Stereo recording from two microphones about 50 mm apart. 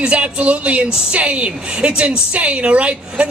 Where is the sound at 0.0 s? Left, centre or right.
Right.